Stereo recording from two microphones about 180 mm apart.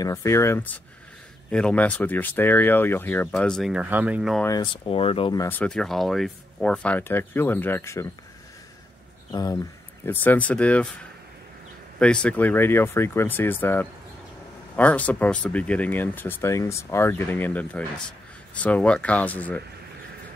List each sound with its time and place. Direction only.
0.0 s speech: 15° left (ahead or behind); by 4.4 s 5° right (ahead or behind)
4.4 s speech: 20° left (ahead or behind)
4.8 s speech: 30° left (ahead or behind)
5.5 s speech: 5° left (ahead or behind)
9.3 s speech: 20° left (ahead or behind)
10.0 s speech: 10° left (ahead or behind)
12.0 s speech: 5° left (ahead or behind)